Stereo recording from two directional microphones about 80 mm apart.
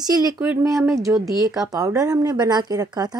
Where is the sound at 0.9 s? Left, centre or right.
Right.